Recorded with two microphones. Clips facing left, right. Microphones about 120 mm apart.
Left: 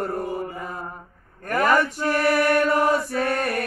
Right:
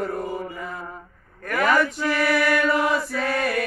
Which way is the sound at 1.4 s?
40° left (ahead or behind).